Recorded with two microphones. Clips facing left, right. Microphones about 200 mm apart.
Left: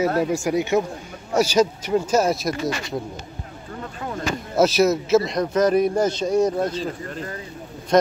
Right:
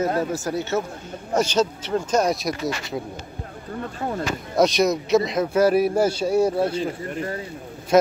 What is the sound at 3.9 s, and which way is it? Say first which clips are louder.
Speech: right 3 dB; 40° right (ahead or behind).